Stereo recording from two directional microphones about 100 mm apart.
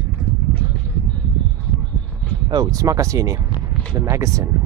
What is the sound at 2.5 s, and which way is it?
Speech, 35° right (ahead or behind).